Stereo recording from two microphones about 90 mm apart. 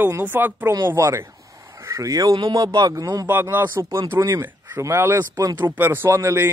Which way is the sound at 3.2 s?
20° right (ahead or behind).